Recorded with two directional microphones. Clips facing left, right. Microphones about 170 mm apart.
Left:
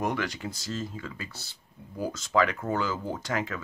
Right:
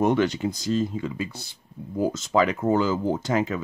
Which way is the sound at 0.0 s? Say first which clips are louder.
Right 9 dB; 25° right (ahead or behind).